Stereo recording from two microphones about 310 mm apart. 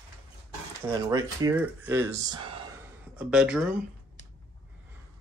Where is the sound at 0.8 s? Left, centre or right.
Centre.